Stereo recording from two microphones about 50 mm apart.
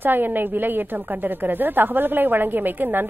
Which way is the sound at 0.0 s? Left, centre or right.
Right.